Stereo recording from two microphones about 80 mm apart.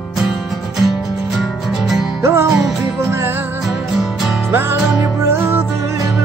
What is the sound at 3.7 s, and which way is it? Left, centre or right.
Music, centre.